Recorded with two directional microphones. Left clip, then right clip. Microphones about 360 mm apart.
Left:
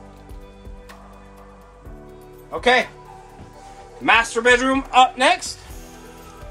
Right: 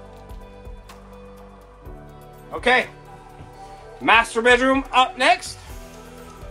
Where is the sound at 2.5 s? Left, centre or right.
Centre.